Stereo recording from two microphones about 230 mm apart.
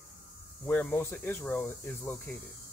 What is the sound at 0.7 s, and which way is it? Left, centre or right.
Speech, centre.